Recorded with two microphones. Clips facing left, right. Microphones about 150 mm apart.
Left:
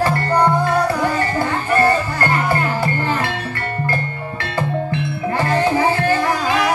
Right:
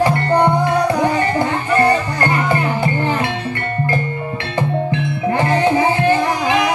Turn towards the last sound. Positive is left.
turn(degrees=-20)  # may be behind; listen again after turning